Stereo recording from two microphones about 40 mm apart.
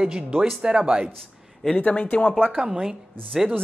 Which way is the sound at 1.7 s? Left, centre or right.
Left.